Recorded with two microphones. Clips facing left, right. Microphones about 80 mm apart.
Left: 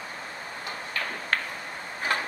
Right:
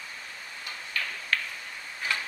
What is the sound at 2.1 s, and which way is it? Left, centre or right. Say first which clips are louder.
Tick-tock: left 4 dB; left.